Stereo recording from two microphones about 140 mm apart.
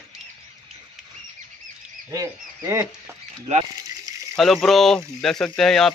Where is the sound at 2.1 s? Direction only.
20° right (ahead or behind).